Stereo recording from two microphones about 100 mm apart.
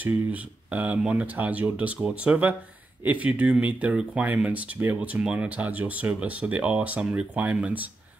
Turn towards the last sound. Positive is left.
turn(degrees=-15)  # may be behind; listen again after turning